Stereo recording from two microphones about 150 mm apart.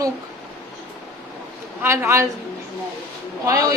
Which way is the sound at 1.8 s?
20° right (ahead or behind).